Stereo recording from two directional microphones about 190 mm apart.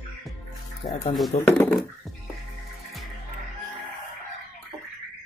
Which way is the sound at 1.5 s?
10° left (ahead or behind).